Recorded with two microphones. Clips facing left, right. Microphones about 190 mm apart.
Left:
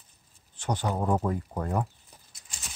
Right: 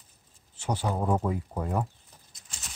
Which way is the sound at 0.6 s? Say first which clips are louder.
Even; 5° right (ahead or behind).